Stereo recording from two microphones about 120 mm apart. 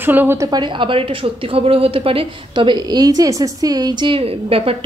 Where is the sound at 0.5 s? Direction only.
40° right (ahead or behind).